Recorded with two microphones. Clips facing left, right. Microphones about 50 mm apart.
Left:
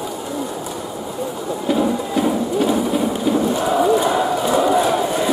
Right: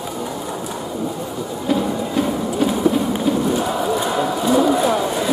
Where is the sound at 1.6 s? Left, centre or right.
Centre.